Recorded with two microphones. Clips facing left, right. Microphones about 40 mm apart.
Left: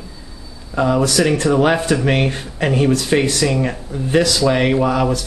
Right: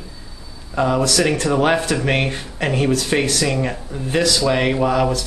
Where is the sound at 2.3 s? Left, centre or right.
Centre.